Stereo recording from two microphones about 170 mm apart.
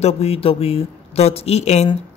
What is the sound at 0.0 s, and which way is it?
A woman's voice, 35° left (ahead or behind).